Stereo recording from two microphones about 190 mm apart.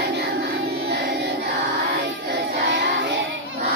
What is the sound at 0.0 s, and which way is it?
Music, 60° right (ahead or behind).